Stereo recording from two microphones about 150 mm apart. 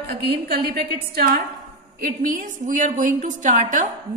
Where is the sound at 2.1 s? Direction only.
60° right (ahead or behind).